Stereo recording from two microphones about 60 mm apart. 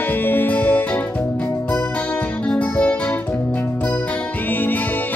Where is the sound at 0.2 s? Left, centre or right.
Left.